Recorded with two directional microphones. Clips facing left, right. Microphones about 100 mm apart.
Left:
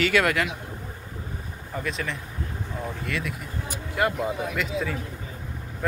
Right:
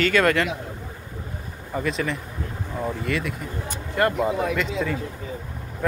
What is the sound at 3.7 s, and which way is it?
Vehicle, 5° left (ahead or behind).